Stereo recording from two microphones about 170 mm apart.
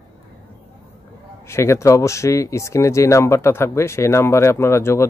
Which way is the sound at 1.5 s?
15° left (ahead or behind).